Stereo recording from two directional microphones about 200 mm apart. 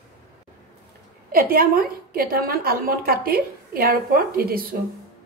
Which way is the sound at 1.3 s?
45° right (ahead or behind).